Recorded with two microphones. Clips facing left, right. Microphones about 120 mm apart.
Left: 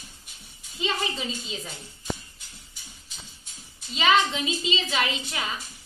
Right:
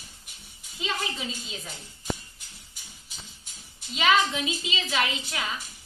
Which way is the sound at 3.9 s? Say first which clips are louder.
Left 1 dB; centre (ahead or behind).